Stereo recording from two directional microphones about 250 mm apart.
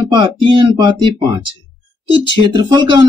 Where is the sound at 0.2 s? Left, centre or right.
Centre.